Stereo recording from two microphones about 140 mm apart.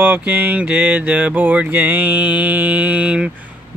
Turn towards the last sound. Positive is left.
turn(degrees=-10)  # may be behind; listen again after turning